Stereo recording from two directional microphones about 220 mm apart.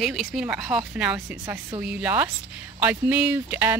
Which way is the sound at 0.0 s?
Centre (ahead or behind).